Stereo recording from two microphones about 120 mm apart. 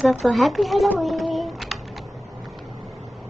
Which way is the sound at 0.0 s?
Centre (ahead or behind).